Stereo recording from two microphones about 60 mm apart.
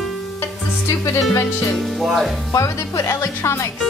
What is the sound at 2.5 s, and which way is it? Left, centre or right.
Speech, left.